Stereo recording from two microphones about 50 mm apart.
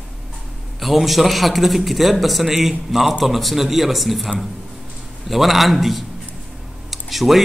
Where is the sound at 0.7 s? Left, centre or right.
Centre.